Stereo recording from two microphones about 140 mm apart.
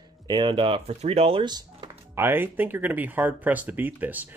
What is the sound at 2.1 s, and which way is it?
Speech, 15° right (ahead or behind).